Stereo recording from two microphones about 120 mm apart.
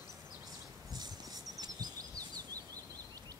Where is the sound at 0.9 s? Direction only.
35° right (ahead or behind).